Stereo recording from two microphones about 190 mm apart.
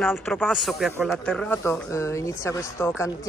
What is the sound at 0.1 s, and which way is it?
Speech, centre (ahead or behind).